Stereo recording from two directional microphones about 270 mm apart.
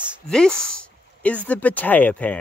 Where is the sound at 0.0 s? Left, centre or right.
Centre.